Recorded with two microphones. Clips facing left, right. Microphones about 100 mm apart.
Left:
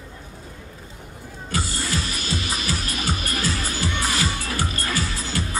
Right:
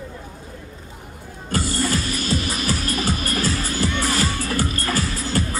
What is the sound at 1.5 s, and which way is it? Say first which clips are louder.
Music: right 5 dB; 45° right (ahead or behind).